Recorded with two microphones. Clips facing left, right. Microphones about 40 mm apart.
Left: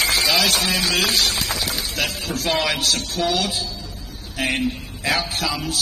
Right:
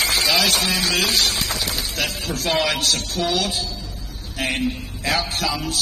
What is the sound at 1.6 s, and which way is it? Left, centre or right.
A man's voice, centre.